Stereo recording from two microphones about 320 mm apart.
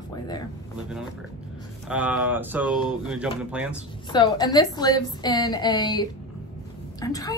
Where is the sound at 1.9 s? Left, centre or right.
Centre.